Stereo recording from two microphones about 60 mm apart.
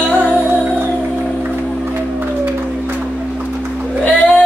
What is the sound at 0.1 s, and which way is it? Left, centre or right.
Music, right.